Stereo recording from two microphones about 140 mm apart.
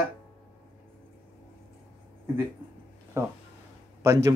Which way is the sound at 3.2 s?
20° right (ahead or behind).